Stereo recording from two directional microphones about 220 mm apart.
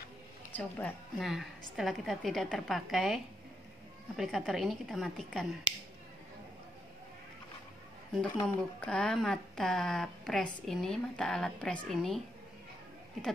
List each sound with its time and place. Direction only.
0.5 s speech: 10° left (ahead or behind)
4.2 s speech: centre (ahead or behind)
8.2 s speech: 5° left (ahead or behind)